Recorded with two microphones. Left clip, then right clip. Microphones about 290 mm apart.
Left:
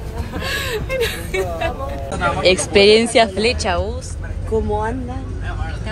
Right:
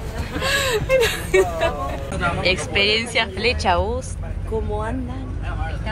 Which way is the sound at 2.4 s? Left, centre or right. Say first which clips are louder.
Left 8 dB; centre.